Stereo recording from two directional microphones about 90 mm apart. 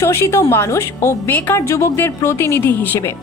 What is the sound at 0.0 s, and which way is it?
Speech, 30° left (ahead or behind).